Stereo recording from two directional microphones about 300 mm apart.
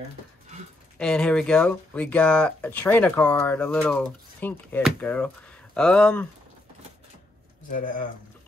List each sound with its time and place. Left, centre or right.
0.9 s speech: centre
7.7 s speech: left